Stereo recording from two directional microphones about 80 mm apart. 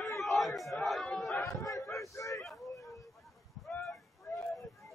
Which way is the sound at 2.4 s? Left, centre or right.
Centre.